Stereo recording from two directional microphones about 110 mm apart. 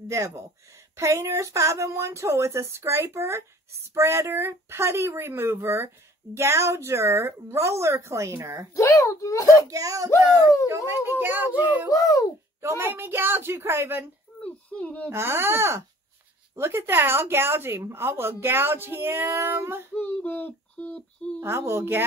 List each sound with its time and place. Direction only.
0.1 s a woman's voice: 25° right (ahead or behind)
8.7 s a child's voice: 30° left (ahead or behind)
9.7 s a woman's voice: 30° right (ahead or behind)
11.9 s speech: 30° left (ahead or behind)
12.6 s a woman's voice: 20° right (ahead or behind)
14.4 s a child's voice: 10° left (ahead or behind)
15.0 s a woman's voice: 20° right (ahead or behind)
20.0 s speech: 15° left (ahead or behind)
21.4 s a woman's voice: 25° right (ahead or behind)